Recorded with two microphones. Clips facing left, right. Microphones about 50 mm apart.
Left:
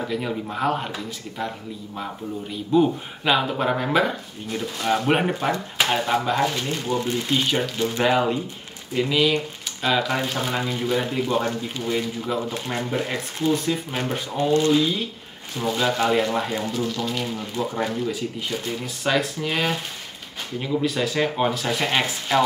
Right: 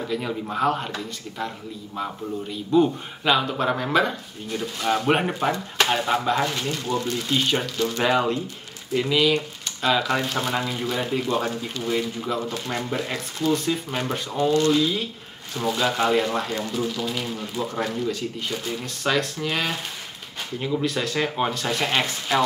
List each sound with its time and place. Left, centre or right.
0.1 s speech: centre
2.7 s speech: centre
6.7 s speech: centre
8.0 s speech: centre